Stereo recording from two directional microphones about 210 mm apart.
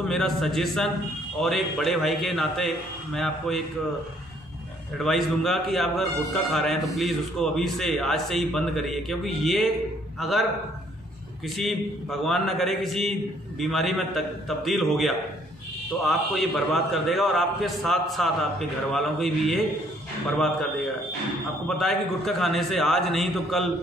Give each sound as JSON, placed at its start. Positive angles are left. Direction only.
{"t": 0.1, "sound": "a man's voice", "side_deg": 0}
{"t": 4.9, "sound": "a man's voice", "side_deg": 0}
{"t": 11.4, "sound": "a man's voice", "side_deg": 0}
{"t": 21.6, "sound": "a man's voice", "side_deg": 0}